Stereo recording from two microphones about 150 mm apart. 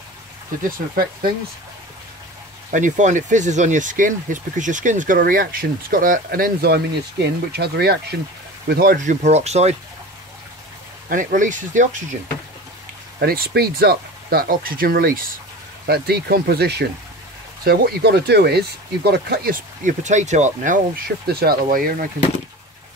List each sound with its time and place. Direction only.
0.7 s speech: 70° right (ahead or behind)
2.7 s speech: 55° right (ahead or behind)
11.1 s speech: 60° right (ahead or behind)
13.2 s speech: 85° right; by 15.3 s 70° right (ahead or behind)
15.9 s speech: 90° right; by 20.8 s 55° right (ahead or behind)
21.3 s speech: 90° right; by 22.0 s 70° right (ahead or behind)